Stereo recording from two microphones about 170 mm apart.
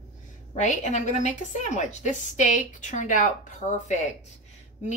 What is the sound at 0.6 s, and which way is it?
A woman's voice, 45° left (ahead or behind).